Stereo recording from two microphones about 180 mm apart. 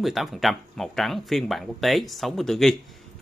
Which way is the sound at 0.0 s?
Centre (ahead or behind).